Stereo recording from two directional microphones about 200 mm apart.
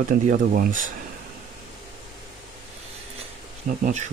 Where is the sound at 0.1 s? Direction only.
45° right (ahead or behind).